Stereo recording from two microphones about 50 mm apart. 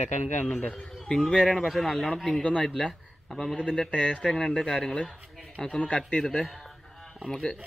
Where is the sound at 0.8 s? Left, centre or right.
Centre.